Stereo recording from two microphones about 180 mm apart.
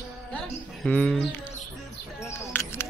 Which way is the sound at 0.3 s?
5° left (ahead or behind).